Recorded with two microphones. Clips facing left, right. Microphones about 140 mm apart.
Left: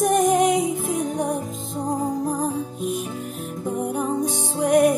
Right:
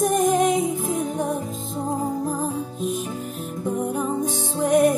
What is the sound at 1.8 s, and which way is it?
Music, 15° left (ahead or behind).